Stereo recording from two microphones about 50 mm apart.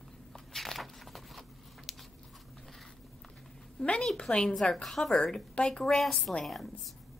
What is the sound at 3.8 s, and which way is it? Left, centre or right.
A woman's voice, centre.